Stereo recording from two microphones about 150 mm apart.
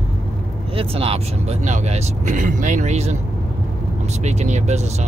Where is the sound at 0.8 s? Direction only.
40° right (ahead or behind).